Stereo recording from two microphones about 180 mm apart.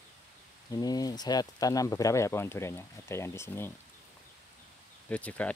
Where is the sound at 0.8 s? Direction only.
20° left (ahead or behind).